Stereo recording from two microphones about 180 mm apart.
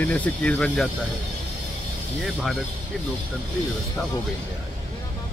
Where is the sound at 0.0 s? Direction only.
10° left (ahead or behind).